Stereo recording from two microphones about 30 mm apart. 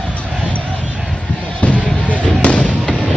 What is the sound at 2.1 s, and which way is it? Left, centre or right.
Fireworks, left.